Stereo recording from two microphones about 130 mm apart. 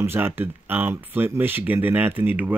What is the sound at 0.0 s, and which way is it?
Speech, 20° right (ahead or behind).